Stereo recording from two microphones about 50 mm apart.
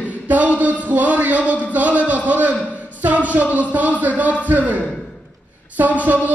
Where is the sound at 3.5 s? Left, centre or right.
Right.